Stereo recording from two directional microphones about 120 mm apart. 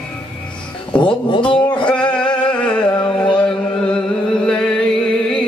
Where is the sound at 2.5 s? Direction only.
10° left (ahead or behind).